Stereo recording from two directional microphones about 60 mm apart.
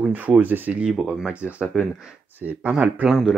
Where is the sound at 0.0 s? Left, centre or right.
Right.